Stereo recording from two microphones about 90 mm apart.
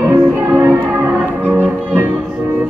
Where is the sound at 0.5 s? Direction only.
20° right (ahead or behind).